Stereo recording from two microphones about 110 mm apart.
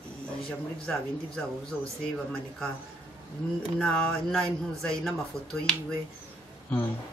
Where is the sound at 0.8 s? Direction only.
5° left (ahead or behind).